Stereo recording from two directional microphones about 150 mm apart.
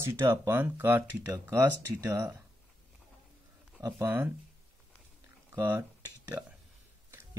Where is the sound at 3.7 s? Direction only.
20° right (ahead or behind).